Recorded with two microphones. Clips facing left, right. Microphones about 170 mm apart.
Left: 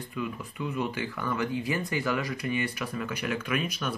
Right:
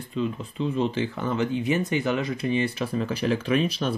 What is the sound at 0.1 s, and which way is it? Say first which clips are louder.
Speech: right 8 dB; 25° right (ahead or behind).